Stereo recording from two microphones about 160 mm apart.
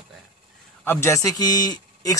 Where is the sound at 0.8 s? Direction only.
15° left (ahead or behind).